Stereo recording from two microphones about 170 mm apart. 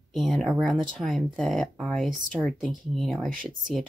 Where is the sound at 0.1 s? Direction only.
Centre (ahead or behind).